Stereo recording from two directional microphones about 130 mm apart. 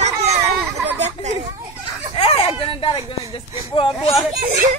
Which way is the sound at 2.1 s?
45° left (ahead or behind).